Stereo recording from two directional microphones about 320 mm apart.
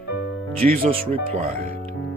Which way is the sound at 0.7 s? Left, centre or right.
Centre.